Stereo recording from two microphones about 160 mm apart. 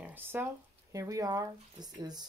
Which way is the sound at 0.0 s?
10° right (ahead or behind).